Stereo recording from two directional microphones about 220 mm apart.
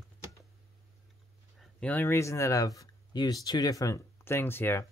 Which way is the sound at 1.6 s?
5° left (ahead or behind).